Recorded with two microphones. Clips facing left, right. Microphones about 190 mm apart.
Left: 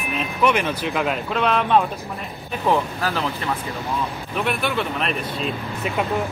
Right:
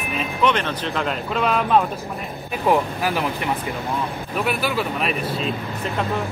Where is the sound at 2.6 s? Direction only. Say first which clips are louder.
Right 2 dB; 15° right (ahead or behind).